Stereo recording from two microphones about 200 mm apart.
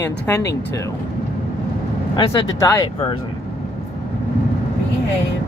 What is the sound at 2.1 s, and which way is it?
Speech, 20° left (ahead or behind).